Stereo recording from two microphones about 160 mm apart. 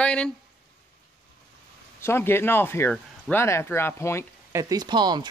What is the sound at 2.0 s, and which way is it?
Speech, 15° left (ahead or behind).